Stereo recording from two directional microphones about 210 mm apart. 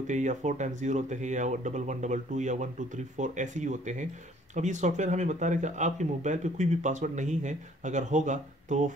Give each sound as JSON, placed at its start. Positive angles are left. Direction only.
{"t": 0.0, "sound": "speech", "side_deg": -35}